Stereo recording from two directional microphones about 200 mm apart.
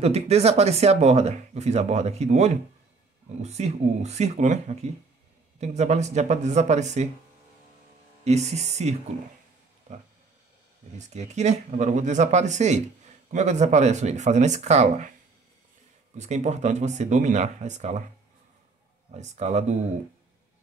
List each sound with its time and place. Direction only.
0.0 s speech: 30° right (ahead or behind)
8.2 s speech: 35° right (ahead or behind)
16.2 s speech: 35° right (ahead or behind)
19.1 s speech: 35° right (ahead or behind)